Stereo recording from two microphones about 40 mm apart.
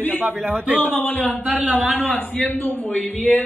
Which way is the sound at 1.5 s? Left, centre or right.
Right.